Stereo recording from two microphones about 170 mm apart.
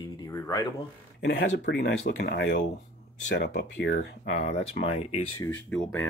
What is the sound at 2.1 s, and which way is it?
Speech, 80° left.